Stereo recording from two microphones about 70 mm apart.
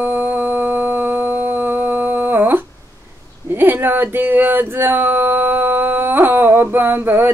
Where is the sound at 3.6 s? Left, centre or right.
Right.